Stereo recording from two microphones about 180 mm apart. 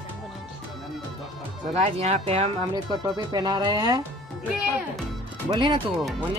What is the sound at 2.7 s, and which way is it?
Speech, 25° right (ahead or behind).